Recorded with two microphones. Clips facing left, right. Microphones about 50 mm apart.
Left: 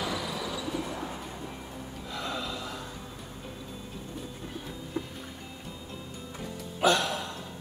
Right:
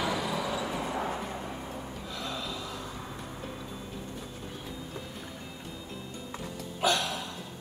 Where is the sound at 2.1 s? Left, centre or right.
Centre.